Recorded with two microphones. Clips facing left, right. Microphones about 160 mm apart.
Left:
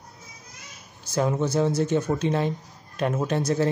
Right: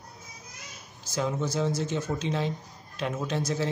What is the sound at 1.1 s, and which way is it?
A man's voice, 60° left (ahead or behind).